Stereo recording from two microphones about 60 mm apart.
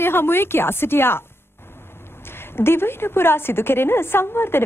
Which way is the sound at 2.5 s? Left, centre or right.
Left.